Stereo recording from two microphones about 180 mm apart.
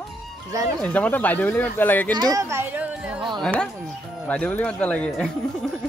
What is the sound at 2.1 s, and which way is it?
Speech, 20° right (ahead or behind).